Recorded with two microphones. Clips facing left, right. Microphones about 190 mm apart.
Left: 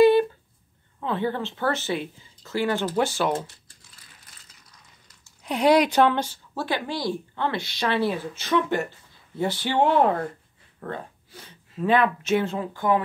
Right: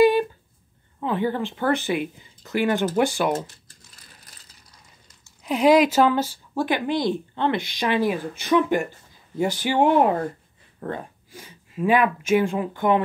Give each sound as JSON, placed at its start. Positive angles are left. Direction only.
{"t": 1.0, "sound": "speech", "side_deg": -15}
{"t": 3.3, "sound": "crumpling", "side_deg": -45}
{"t": 5.4, "sound": "speech", "side_deg": 0}